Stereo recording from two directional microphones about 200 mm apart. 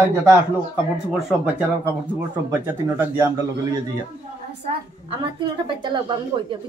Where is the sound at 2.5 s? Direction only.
10° right (ahead or behind).